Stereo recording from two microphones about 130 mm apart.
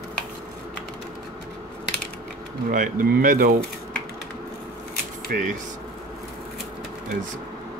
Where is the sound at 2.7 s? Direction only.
90° right.